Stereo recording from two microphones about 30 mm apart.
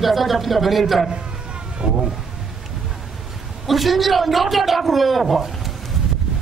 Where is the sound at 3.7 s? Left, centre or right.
Centre.